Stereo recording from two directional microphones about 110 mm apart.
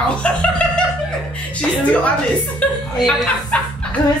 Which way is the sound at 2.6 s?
10° left (ahead or behind).